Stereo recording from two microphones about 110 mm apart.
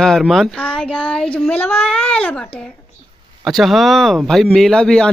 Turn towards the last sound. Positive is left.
turn(degrees=5)  # may be behind; listen again after turning